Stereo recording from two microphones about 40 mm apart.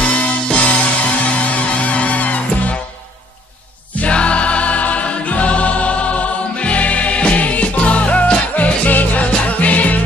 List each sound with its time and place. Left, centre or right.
0.0 s music: left
3.9 s music: left